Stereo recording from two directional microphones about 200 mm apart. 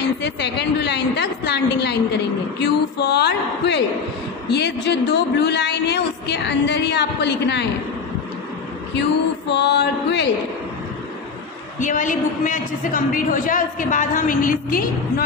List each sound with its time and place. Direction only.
0.2 s a man's voice: 55° left (ahead or behind)
9.5 s a man's voice: 60° left (ahead or behind)
11.8 s a man's voice: 40° left (ahead or behind)